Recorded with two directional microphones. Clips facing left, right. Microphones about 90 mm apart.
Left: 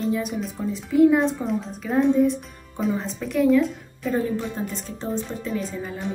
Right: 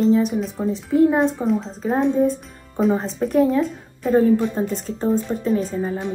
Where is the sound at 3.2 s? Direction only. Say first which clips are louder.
Right 1 dB; 40° right (ahead or behind).